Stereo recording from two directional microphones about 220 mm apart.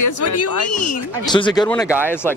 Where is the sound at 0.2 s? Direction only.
90° left.